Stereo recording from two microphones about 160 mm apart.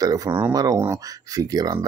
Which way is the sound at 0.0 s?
20° right (ahead or behind).